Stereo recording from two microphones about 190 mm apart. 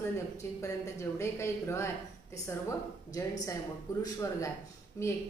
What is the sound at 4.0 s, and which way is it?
A woman's voice, 15° left (ahead or behind).